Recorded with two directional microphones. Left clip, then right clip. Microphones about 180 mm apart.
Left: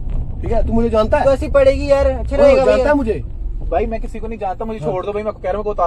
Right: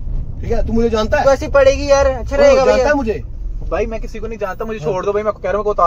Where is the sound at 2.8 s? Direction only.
50° right (ahead or behind).